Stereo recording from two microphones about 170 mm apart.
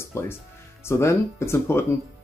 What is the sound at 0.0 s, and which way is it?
Speech, 15° left (ahead or behind).